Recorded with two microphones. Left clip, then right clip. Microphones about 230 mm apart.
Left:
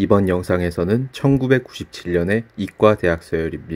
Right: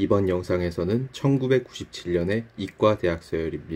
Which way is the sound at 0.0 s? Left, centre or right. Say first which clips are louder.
Left 5 dB; left.